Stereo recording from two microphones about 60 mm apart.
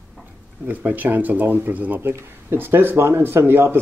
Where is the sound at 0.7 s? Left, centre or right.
Right.